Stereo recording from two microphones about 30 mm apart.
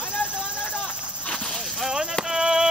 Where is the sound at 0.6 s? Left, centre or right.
Left.